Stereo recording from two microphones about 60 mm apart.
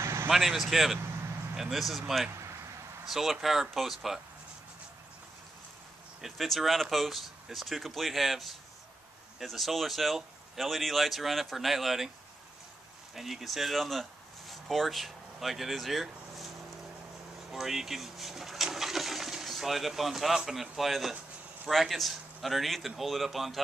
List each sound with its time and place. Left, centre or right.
0.0 s vehicle: right
0.3 s speech: centre
6.2 s speech: centre
13.1 s speech: centre